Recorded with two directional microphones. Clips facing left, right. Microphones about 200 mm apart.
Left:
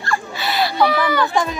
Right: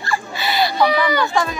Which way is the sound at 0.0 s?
Centre (ahead or behind).